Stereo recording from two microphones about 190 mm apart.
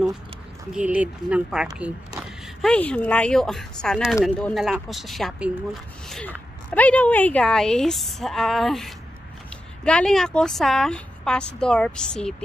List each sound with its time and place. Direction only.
0.7 s speech: 5° right (ahead or behind)